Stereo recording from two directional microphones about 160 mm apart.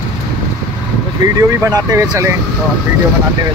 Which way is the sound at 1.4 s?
20° right (ahead or behind).